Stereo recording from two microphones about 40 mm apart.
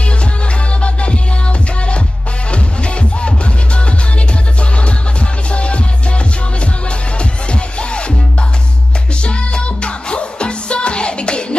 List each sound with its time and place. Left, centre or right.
2.5 s music: left
5.5 s music: left
9.2 s music: left